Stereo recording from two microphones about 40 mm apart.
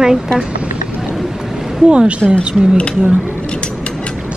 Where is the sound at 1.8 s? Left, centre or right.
Right.